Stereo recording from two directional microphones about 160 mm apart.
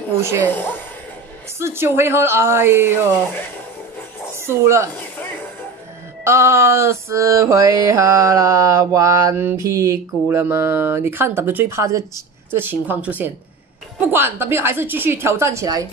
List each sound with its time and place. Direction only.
0.4 s a woman's voice: 10° left (ahead or behind)
1.6 s a woman's voice: 15° right (ahead or behind)
4.5 s a woman's voice: 15° right (ahead or behind)
6.2 s mantra: 15° right (ahead or behind)
12.4 s a woman's voice: 10° right (ahead or behind)